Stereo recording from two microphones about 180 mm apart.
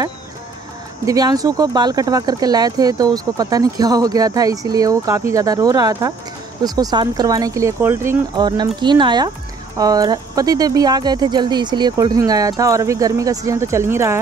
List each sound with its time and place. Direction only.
1.0 s speech: 20° right (ahead or behind)